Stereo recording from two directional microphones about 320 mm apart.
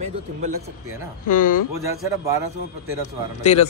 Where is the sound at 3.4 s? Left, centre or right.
Left.